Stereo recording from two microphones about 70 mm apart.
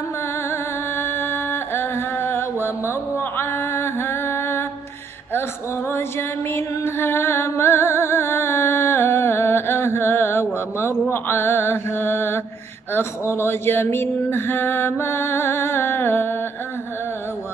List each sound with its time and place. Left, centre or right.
0.5 s music: left
5.9 s music: left
12.9 s a sound: left